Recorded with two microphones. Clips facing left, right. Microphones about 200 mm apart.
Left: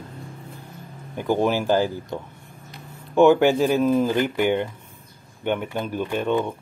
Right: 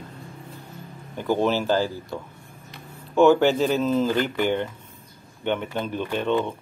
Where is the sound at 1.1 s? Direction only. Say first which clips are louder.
Left 1 dB; 15° left (ahead or behind).